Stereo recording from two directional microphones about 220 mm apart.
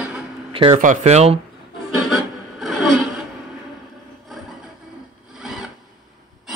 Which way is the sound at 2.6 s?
Centre (ahead or behind).